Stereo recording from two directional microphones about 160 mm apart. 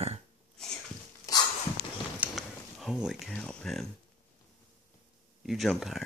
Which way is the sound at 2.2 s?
Centre (ahead or behind).